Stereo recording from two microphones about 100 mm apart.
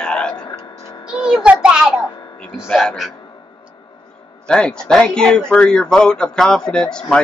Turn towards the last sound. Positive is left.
turn(degrees=10)  # may be behind; listen again after turning